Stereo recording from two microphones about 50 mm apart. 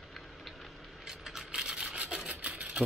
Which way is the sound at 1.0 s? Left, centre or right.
Centre.